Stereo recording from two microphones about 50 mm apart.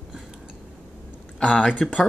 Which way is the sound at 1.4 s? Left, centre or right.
Left.